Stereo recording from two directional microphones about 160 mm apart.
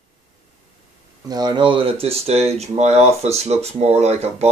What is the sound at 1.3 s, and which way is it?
Speech, 25° right (ahead or behind).